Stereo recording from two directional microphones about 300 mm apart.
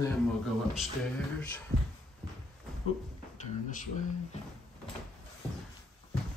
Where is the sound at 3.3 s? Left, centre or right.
Left.